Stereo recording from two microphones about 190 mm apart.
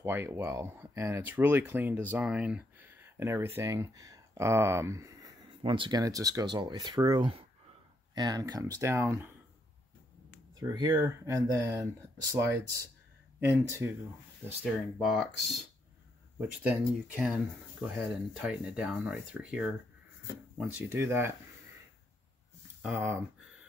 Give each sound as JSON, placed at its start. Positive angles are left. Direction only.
{"t": 0.0, "sound": "speech", "side_deg": -10}
{"t": 10.6, "sound": "speech", "side_deg": -20}
{"t": 22.9, "sound": "speech", "side_deg": -10}